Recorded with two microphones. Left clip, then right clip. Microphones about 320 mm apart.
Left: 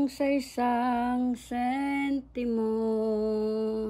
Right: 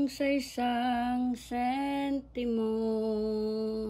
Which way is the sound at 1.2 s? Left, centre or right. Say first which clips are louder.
Left 2 dB; centre.